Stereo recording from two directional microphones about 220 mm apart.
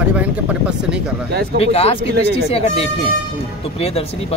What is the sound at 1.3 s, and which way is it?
Speech, 50° right (ahead or behind).